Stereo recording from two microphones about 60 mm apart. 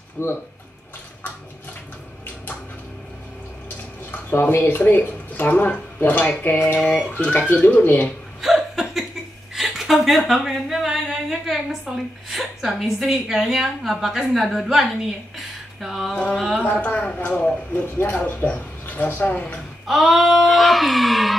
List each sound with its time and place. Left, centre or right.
0.2 s speech: left
4.3 s speech: left
8.4 s chuckle: centre
9.6 s speech: centre
16.3 s a sound: centre
16.6 s speech: left
17.7 s speech: left
19.9 s a sound: centre